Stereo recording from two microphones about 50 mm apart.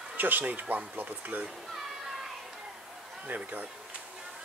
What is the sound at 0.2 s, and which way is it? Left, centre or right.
Speech, right.